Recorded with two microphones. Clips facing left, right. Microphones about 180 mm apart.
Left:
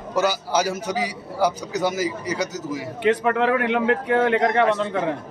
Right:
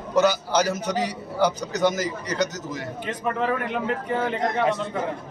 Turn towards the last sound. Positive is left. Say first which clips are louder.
# left 4 dB
turn(degrees=70)  # may be behind; listen again after turning